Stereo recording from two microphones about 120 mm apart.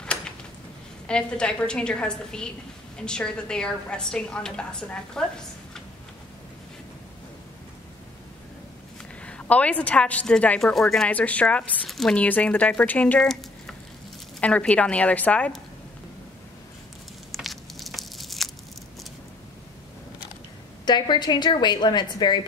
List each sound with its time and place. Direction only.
1.0 s speech: 10° left (ahead or behind)
9.2 s a woman's voice: 10° left (ahead or behind)
13.2 s a sound: centre (ahead or behind)
14.4 s speech: 10° left (ahead or behind)
17.3 s tearing: centre (ahead or behind)
20.8 s a woman's voice: 35° left (ahead or behind)